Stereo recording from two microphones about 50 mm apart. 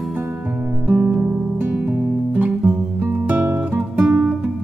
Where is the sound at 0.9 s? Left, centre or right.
Right.